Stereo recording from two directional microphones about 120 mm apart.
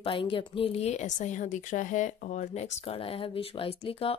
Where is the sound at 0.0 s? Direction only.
45° left (ahead or behind).